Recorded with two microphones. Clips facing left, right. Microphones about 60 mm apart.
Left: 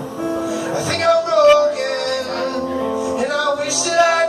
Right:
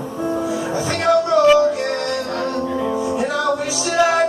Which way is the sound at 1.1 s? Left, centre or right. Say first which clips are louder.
Left 1 dB; right.